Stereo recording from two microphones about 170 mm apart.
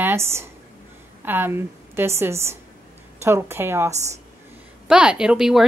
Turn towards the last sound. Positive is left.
turn(degrees=-5)  # may be behind; listen again after turning